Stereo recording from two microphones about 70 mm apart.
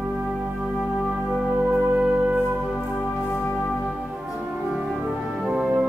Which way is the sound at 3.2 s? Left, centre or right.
Left.